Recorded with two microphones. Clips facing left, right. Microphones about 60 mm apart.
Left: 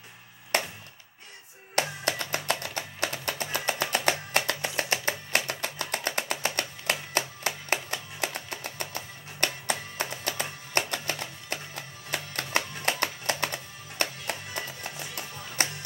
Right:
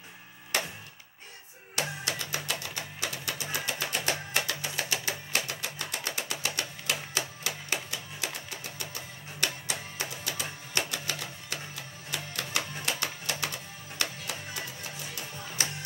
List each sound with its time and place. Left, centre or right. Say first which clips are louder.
1.8 s music: left 5 dB; left
4.5 s music: left 4 dB; left